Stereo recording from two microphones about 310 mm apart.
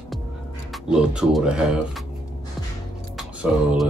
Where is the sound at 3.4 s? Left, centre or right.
Centre.